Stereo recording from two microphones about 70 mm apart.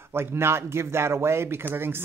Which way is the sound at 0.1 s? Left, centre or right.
Right.